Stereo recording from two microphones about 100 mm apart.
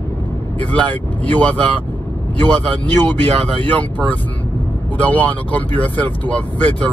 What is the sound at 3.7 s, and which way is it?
Speech, 15° left (ahead or behind).